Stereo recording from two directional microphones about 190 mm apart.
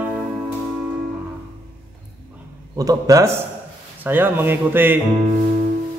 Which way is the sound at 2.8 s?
20° right (ahead or behind).